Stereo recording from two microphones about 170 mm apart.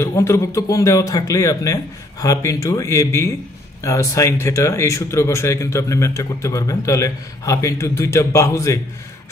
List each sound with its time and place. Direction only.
0.0 s speech: 15° left (ahead or behind)